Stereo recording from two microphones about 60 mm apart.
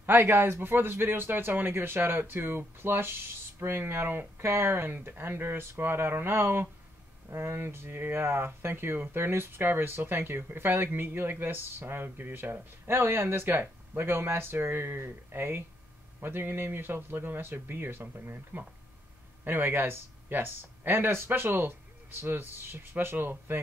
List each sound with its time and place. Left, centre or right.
0.0 s speech: right